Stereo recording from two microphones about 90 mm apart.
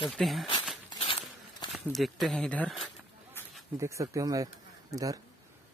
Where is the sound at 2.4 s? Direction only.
15° left (ahead or behind).